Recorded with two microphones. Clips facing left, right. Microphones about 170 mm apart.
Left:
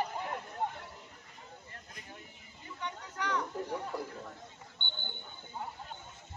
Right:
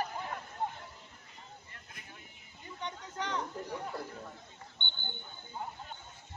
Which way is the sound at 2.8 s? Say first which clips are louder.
Even; 30° right (ahead or behind).